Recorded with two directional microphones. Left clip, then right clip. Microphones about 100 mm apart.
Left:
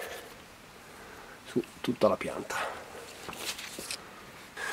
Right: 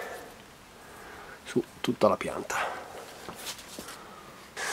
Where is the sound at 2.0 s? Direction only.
15° right (ahead or behind).